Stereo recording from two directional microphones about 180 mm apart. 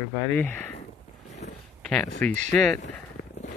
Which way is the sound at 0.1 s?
10° left (ahead or behind).